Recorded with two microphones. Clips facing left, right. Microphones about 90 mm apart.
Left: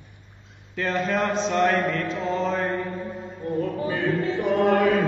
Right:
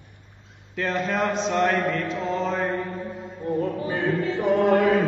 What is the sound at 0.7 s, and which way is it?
Mantra, centre (ahead or behind).